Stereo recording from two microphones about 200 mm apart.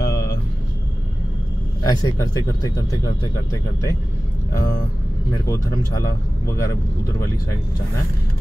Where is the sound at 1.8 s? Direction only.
20° left (ahead or behind).